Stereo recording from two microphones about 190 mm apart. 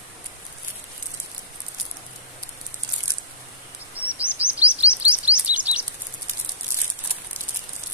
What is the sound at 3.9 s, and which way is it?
Bird vocalization, 10° right (ahead or behind).